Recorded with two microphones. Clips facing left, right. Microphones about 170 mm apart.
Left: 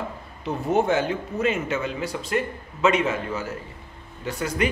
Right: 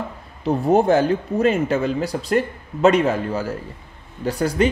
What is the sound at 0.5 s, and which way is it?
A woman's voice, 35° right (ahead or behind).